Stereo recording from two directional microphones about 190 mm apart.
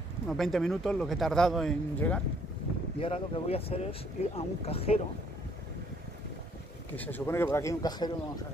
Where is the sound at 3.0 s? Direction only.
30° left (ahead or behind).